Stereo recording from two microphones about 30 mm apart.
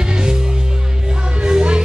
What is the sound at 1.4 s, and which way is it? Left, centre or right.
Music, right.